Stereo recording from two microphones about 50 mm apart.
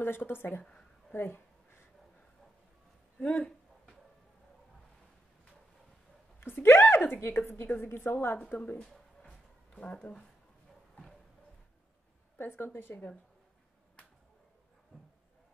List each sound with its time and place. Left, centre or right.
0.0 s a woman's voice: left
1.1 s a sound: left
3.2 s speech: left
6.4 s a woman's voice: left
8.4 s speech: left
9.8 s speech: left
12.4 s a woman's voice: left